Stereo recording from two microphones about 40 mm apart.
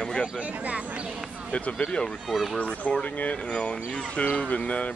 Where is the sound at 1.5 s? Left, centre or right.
Left.